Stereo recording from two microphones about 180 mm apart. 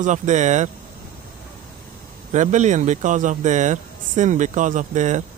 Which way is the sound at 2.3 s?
45° right (ahead or behind).